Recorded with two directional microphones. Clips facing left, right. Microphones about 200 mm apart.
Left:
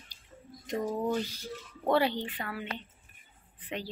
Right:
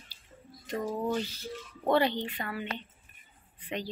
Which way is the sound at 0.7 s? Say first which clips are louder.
Left 1 dB; 15° left (ahead or behind).